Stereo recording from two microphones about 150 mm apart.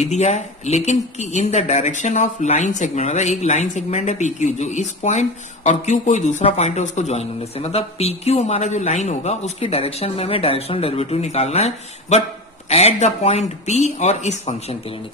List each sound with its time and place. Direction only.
0.0 s speech: 50° left (ahead or behind)